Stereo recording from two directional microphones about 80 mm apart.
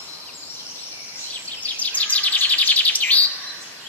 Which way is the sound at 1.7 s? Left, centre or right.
Centre.